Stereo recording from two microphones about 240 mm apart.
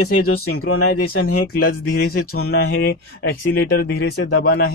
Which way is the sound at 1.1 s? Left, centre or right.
Left.